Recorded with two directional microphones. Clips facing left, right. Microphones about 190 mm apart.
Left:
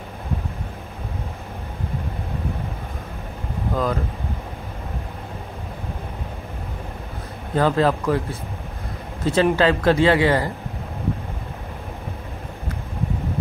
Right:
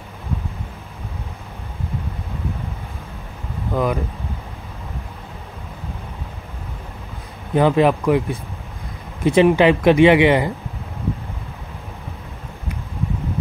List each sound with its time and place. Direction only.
3.7 s speech: 15° right (ahead or behind)
7.5 s speech: 15° right (ahead or behind)